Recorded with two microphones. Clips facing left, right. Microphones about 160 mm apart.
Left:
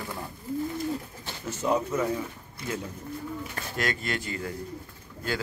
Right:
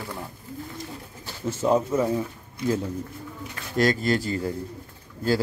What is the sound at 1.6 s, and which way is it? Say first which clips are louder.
Speech: right 4 dB; 25° right (ahead or behind).